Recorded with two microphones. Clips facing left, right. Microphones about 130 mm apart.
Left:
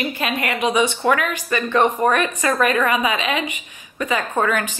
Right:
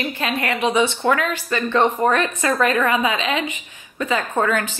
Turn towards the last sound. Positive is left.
turn(degrees=15)  # may be behind; listen again after turning